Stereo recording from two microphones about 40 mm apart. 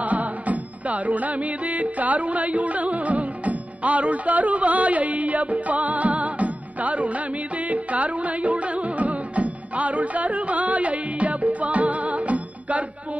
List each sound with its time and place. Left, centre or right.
0.0 s music: right